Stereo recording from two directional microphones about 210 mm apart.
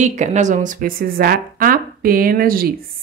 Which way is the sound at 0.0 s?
35° right (ahead or behind).